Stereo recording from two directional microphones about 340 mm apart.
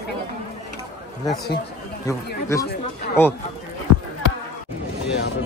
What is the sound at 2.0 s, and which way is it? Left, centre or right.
Speech, centre.